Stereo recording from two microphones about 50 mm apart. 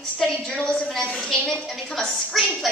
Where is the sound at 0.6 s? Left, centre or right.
Centre.